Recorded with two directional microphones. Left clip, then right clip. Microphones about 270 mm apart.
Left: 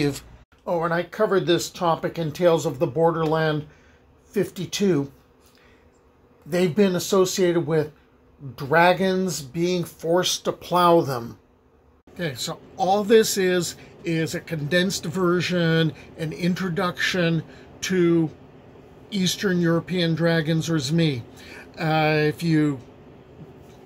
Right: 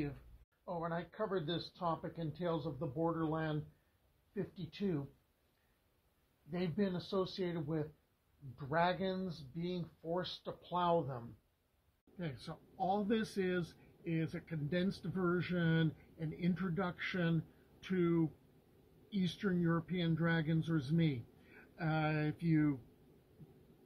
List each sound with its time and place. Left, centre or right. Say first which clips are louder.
0.7 s speech: left 18 dB; left
6.5 s speech: left 19 dB; left
12.2 s a man's voice: left 19 dB; centre